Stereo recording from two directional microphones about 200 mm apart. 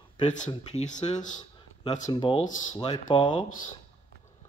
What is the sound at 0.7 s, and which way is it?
Speech, 35° left (ahead or behind).